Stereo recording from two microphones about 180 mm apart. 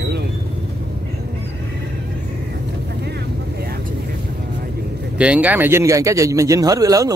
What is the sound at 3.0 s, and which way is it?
Vehicle, 60° right (ahead or behind).